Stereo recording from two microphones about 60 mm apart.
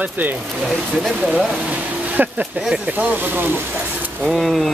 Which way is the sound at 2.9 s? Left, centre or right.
Right.